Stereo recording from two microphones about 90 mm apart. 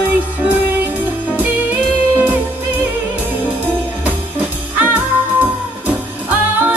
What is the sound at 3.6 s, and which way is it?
Music, 15° right (ahead or behind).